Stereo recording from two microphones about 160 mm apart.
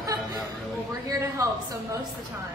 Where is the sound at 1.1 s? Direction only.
20° right (ahead or behind).